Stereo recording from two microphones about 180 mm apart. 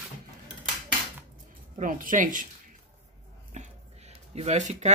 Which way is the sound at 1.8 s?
50° right (ahead or behind).